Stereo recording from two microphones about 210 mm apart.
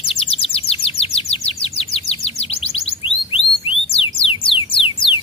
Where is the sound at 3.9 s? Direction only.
25° left (ahead or behind).